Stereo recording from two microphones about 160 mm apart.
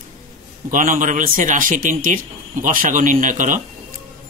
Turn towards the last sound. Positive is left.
turn(degrees=-55)  # may be behind; listen again after turning